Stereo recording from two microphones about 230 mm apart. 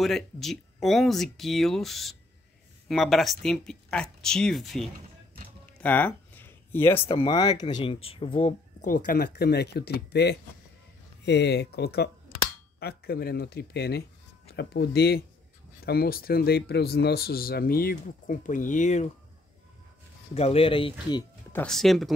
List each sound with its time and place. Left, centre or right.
0.0 s speech: centre
5.8 s a sound: centre
7.1 s speech: left
20.3 s speech: left
21.1 s speech: centre